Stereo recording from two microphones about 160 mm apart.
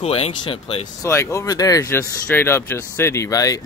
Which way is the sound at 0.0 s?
40° left (ahead or behind).